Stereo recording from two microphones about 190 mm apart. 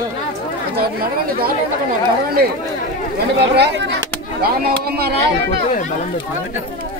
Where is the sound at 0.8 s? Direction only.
55° right (ahead or behind).